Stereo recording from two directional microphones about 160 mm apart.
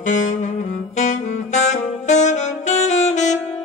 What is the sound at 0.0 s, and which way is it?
Saxophone, 50° left (ahead or behind).